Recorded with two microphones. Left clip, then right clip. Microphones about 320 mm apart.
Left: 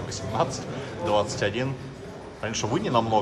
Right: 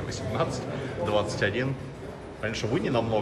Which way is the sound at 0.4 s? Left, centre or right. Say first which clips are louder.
Left 3 dB; centre.